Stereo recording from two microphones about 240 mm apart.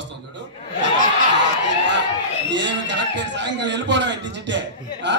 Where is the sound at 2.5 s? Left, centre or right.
Right.